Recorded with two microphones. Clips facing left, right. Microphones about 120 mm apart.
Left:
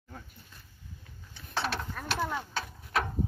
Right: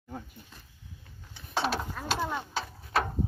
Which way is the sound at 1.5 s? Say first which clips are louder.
Right 3 dB; 15° right (ahead or behind).